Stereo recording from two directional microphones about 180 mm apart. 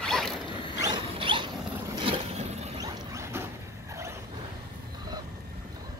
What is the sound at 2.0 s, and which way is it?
Vehicle, 35° right (ahead or behind).